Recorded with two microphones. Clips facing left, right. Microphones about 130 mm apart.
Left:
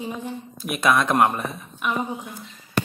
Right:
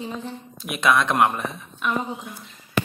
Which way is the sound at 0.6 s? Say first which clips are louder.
Even; 40° left (ahead or behind).